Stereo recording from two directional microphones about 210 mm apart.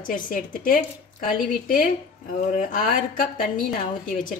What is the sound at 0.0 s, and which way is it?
A woman's voice, 40° left (ahead or behind).